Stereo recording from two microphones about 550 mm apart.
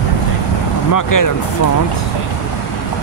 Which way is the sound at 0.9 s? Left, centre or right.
Left.